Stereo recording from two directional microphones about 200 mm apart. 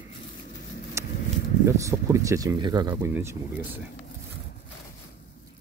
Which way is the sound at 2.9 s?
10° right (ahead or behind).